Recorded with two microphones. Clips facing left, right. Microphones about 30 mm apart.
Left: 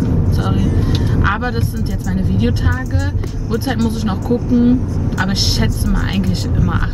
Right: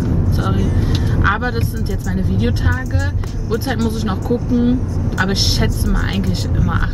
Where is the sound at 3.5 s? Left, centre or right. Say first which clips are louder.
Left 1 dB; centre.